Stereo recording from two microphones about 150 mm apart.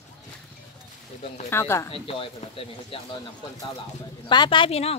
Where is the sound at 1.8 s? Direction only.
35° left (ahead or behind).